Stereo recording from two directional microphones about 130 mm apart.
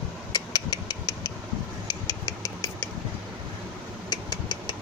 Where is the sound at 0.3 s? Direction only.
30° left (ahead or behind).